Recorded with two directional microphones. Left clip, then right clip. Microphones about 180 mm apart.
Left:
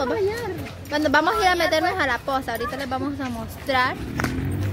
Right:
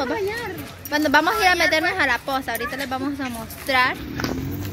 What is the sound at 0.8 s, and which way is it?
A woman's voice, 15° right (ahead or behind).